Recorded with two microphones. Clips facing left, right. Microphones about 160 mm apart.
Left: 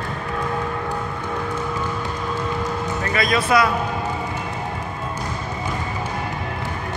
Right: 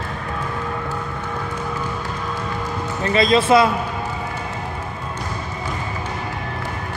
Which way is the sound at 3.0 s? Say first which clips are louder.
Right 7 dB; 25° right (ahead or behind).